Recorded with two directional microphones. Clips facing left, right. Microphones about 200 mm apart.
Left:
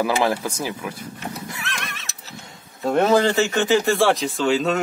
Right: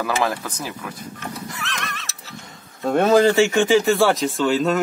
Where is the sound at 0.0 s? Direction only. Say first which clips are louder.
Left 2 dB; 15° left (ahead or behind).